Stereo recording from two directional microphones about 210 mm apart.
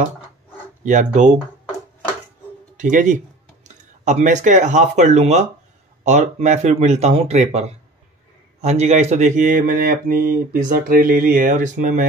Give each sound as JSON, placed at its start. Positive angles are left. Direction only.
{"t": 0.8, "sound": "speech", "side_deg": -35}
{"t": 2.8, "sound": "speech", "side_deg": -35}